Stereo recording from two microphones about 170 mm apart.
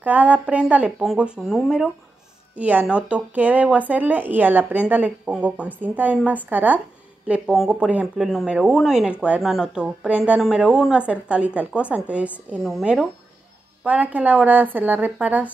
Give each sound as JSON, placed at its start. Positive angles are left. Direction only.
{"t": 0.0, "sound": "speech", "side_deg": -10}